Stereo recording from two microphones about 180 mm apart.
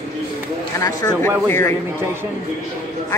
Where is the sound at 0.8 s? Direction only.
20° left (ahead or behind).